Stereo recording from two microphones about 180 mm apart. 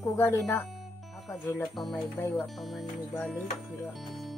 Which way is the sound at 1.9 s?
20° left (ahead or behind).